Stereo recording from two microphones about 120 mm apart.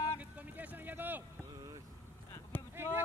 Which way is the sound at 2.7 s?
20° right (ahead or behind).